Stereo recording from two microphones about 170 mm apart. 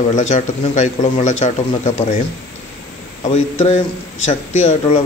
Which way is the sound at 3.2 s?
45° left (ahead or behind).